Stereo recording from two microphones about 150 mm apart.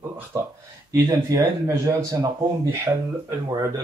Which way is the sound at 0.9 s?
20° right (ahead or behind).